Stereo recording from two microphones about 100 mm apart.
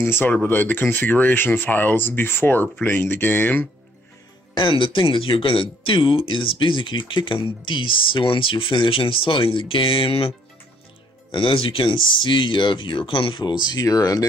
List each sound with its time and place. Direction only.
0.0 s speech: 20° left (ahead or behind)
4.6 s speech: 55° left (ahead or behind)
11.3 s speech: 65° left (ahead or behind)
13.7 s speech: 35° left (ahead or behind)